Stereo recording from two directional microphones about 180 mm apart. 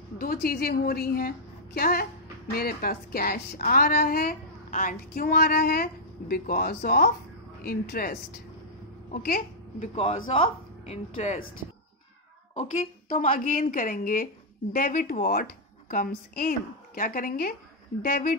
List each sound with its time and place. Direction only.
0.2 s a woman's voice: 55° left (ahead or behind)
10.3 s a woman's voice: 35° left (ahead or behind)
13.1 s a woman's voice: 45° left (ahead or behind)